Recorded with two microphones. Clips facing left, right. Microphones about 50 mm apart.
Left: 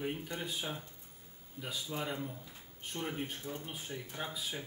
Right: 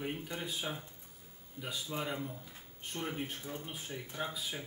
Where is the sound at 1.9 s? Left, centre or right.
Centre.